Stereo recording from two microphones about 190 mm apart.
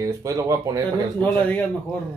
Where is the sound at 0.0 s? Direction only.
15° right (ahead or behind).